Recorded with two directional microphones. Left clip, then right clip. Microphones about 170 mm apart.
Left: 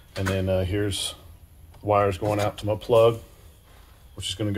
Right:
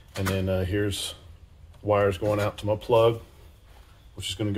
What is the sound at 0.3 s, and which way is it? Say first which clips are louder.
Speech: left 2 dB; 20° left (ahead or behind).